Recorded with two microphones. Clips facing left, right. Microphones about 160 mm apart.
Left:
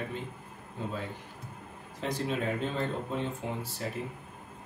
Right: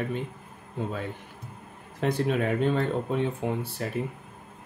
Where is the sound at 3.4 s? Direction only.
60° right (ahead or behind).